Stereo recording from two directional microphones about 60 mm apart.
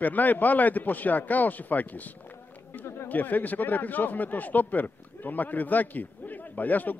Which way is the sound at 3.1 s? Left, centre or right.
Left.